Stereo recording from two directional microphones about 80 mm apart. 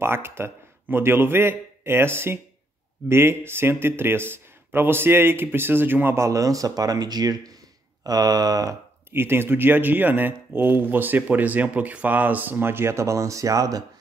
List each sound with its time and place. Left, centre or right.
0.0 s a man's voice: right
9.1 s speech: right